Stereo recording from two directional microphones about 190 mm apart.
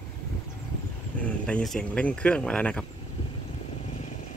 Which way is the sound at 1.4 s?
5° left (ahead or behind).